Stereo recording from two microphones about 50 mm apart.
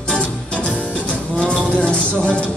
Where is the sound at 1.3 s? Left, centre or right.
Centre.